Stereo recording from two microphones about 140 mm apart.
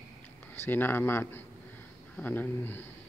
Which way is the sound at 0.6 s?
15° left (ahead or behind).